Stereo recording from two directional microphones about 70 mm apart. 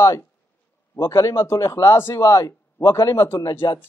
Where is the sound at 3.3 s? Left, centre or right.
Left.